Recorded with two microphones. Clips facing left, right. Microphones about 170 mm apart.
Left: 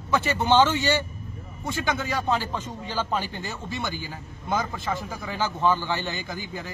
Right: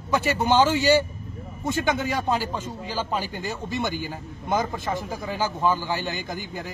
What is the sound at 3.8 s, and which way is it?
Speech, 50° right (ahead or behind).